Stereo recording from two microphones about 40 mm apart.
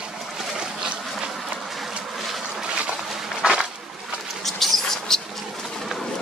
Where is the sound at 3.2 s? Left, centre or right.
Right.